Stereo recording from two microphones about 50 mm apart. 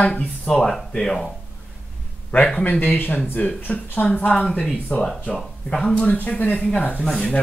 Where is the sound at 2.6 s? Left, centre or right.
Left.